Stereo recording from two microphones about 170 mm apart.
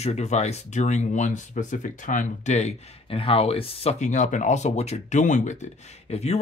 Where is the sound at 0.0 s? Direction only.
40° left (ahead or behind).